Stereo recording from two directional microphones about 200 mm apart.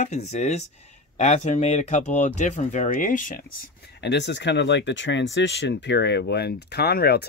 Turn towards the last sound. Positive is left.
turn(degrees=55)  # may be behind; listen again after turning